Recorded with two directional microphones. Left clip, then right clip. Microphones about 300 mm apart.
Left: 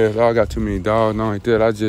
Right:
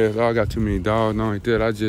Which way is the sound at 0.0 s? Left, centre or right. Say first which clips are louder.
Left 4 dB; centre.